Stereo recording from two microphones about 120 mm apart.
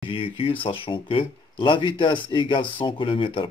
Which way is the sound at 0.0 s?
50° left (ahead or behind).